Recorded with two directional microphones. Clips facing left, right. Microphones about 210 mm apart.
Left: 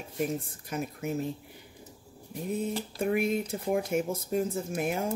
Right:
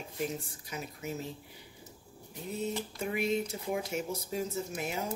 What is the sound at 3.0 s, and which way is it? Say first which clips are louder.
Speech: left 4 dB; 55° left (ahead or behind).